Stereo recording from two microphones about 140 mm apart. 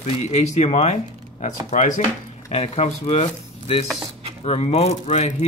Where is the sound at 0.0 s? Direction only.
50° left (ahead or behind).